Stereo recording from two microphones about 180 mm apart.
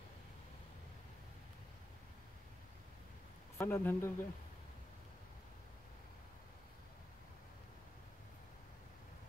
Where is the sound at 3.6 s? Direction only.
15° left (ahead or behind).